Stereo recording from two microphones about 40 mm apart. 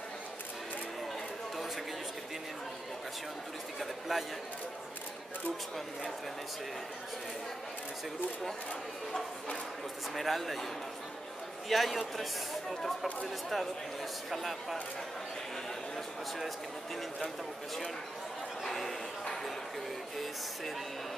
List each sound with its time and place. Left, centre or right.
4.1 s speech: centre
10.1 s speech: centre
11.7 s speech: centre
14.3 s speech: centre
18.6 s a sound: centre